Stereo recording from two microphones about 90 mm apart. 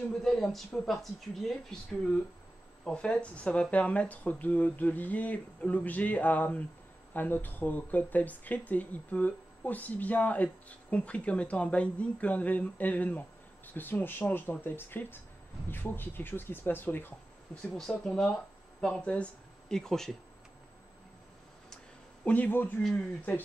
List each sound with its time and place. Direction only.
0.2 s speech: 5° left (ahead or behind); by 17.1 s 25° left (ahead or behind)
17.6 s speech: 5° left (ahead or behind)
22.2 s speech: 15° left (ahead or behind)